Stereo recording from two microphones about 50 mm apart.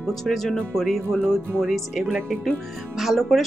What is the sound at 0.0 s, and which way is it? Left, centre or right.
Speech, centre.